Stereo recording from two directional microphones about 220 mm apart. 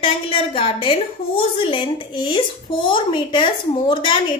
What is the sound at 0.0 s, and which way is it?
A woman's voice, 25° left (ahead or behind).